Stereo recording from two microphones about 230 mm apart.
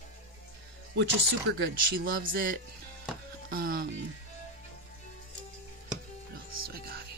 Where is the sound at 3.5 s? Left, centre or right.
Right.